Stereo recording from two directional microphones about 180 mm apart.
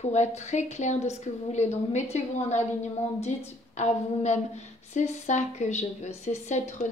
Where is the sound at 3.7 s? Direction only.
40° left (ahead or behind).